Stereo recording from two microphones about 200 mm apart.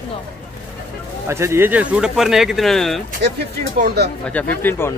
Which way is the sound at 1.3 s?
15° right (ahead or behind).